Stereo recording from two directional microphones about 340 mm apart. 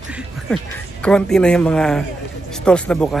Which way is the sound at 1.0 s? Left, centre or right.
Centre.